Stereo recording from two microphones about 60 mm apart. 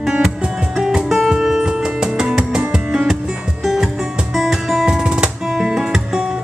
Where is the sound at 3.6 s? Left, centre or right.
Centre.